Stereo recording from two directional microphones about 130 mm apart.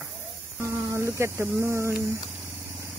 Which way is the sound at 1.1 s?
20° right (ahead or behind).